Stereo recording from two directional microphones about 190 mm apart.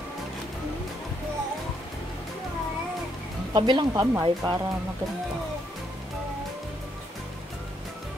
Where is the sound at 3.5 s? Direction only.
25° right (ahead or behind).